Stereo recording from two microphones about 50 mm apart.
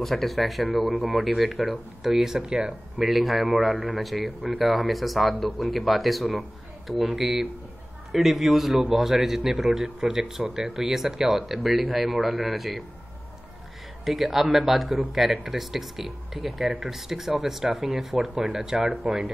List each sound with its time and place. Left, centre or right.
0.0 s speech: centre
2.4 s speech: centre
3.0 s a man's voice: centre
14.0 s a man's voice: centre